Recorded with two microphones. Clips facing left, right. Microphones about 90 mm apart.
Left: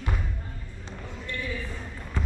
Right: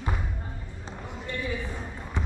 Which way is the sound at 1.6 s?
15° right (ahead or behind).